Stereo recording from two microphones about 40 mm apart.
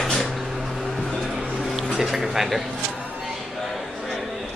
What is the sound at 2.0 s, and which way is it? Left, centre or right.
Speech, centre.